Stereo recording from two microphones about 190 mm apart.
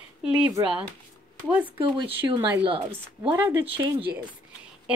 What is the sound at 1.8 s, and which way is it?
Speech, 25° right (ahead or behind).